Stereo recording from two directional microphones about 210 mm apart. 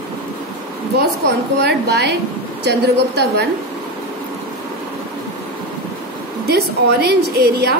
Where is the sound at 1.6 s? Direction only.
50° right (ahead or behind).